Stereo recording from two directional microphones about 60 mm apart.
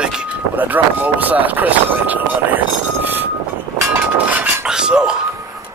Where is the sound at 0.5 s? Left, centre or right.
Right.